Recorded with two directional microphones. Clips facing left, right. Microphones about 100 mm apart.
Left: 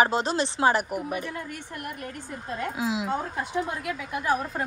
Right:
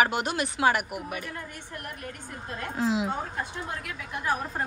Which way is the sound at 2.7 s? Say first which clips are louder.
Right 4 dB; centre (ahead or behind).